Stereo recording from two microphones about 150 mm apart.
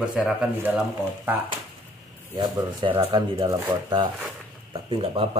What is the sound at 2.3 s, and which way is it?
Speech, 30° right (ahead or behind).